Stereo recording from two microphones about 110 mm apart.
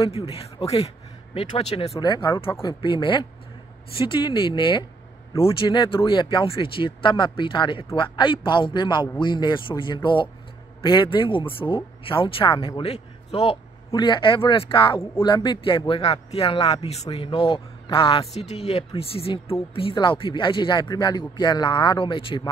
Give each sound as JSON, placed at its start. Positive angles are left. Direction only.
{"t": 0.0, "sound": "speech", "side_deg": 65}
{"t": 2.0, "sound": "a man's voice", "side_deg": 40}
{"t": 13.9, "sound": "speech", "side_deg": 45}
{"t": 15.9, "sound": "speech", "side_deg": 65}